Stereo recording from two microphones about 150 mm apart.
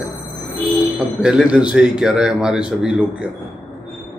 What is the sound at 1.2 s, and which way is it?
A man's voice, 5° right (ahead or behind).